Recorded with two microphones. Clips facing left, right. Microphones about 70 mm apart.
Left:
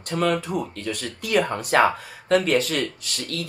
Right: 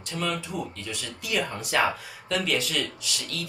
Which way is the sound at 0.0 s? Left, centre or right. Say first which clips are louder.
Left 7 dB; left.